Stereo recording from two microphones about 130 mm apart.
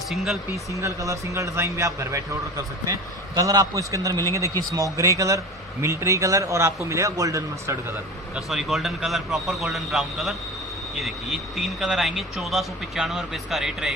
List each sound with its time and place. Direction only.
0.1 s speech: centre (ahead or behind)
0.7 s a man's voice: 25° right (ahead or behind)
8.4 s speech: centre (ahead or behind)